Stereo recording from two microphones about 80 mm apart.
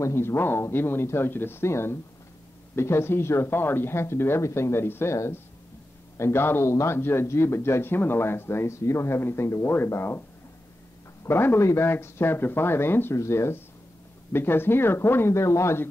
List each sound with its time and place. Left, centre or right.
0.0 s speech: left
11.2 s speech: left